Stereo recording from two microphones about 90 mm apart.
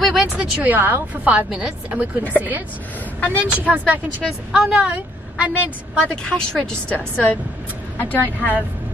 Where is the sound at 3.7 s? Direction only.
20° right (ahead or behind).